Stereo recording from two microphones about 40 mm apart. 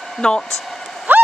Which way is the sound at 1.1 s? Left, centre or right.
Right.